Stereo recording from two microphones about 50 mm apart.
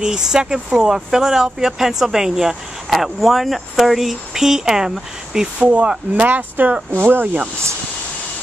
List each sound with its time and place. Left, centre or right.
0.0 s speech: centre
5.6 s speech: right
6.3 s speech: right